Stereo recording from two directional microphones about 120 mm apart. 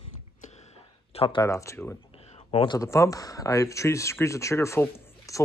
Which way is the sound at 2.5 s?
40° left (ahead or behind).